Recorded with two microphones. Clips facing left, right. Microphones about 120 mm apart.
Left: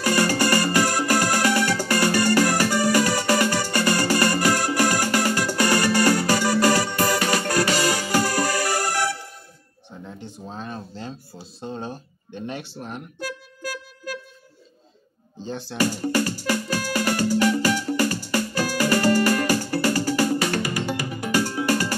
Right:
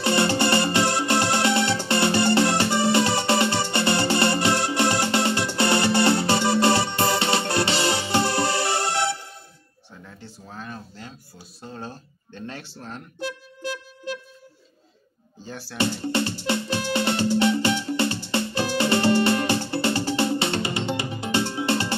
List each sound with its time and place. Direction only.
0.0 s music: 25° right (ahead or behind)
9.8 s a sound: 20° left (ahead or behind)
13.2 s music: 25° right (ahead or behind)
15.4 s speech: 20° left (ahead or behind)
16.1 s music: 25° right (ahead or behind)